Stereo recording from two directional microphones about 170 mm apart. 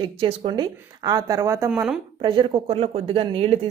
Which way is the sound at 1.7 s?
5° right (ahead or behind).